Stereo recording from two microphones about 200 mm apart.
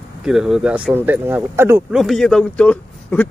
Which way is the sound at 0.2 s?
5° right (ahead or behind).